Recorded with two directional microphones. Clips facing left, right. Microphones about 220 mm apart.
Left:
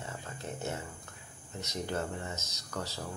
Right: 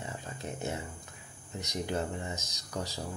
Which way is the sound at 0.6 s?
15° right (ahead or behind).